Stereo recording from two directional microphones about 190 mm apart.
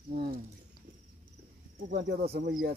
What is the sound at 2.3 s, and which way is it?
Speech, 55° right (ahead or behind).